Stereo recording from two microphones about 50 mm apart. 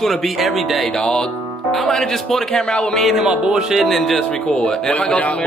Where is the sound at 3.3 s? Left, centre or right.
Centre.